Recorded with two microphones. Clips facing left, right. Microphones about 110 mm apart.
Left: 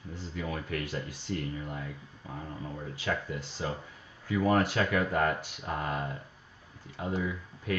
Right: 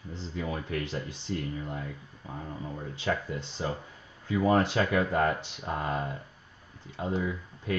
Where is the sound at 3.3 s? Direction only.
25° right (ahead or behind).